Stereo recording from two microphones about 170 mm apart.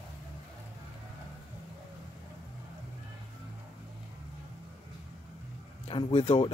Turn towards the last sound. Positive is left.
turn(degrees=35)  # may be behind; listen again after turning